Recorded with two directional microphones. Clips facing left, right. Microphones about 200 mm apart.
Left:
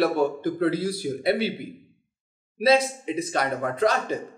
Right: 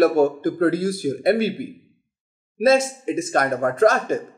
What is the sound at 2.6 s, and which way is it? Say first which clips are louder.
A man's voice: right 3 dB; 45° right (ahead or behind).